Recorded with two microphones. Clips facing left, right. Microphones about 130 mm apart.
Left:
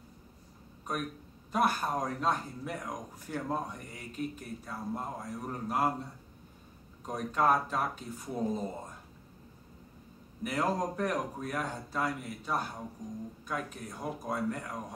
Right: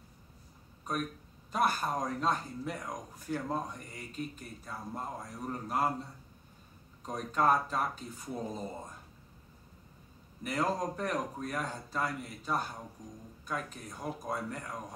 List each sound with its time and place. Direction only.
1.5 s a man's voice: centre (ahead or behind)
7.1 s a man's voice: 5° left (ahead or behind)
10.4 s a man's voice: 5° left (ahead or behind)